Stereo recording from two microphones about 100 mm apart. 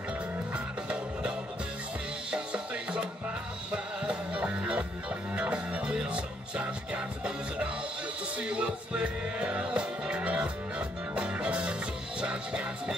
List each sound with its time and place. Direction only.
0.5 s music: 10° right (ahead or behind)
2.3 s music: 10° right (ahead or behind)